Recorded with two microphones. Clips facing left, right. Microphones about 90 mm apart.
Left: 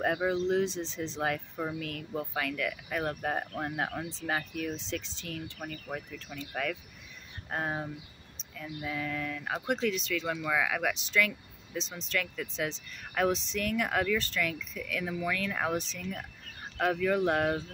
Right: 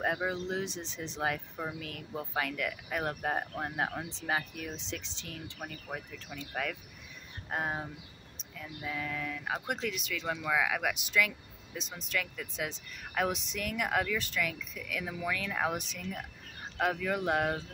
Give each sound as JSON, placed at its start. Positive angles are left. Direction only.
{"t": 0.0, "sound": "speech", "side_deg": -5}
{"t": 6.3, "sound": "speech", "side_deg": -5}